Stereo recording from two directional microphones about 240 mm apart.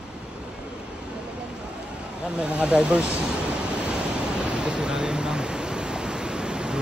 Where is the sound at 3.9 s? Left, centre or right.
Centre.